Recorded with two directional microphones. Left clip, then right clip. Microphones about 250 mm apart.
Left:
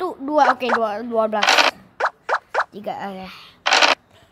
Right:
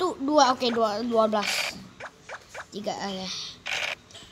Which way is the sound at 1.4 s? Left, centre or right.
Left.